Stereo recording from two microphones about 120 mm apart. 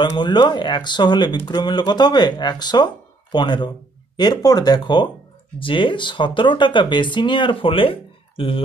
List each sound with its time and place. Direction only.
0.0 s speech: 40° left (ahead or behind)